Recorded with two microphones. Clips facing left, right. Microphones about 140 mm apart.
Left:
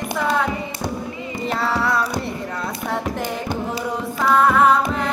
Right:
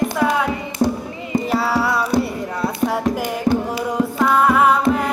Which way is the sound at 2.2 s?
5° right (ahead or behind).